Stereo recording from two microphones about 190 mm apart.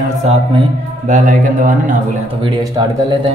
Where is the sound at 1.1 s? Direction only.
40° right (ahead or behind).